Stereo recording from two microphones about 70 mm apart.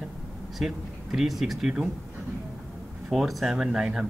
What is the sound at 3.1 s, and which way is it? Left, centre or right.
Speech, centre.